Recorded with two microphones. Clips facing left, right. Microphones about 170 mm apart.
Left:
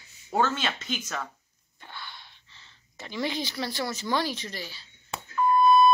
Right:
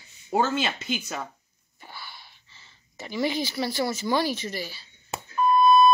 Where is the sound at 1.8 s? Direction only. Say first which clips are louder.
Even; 5° right (ahead or behind).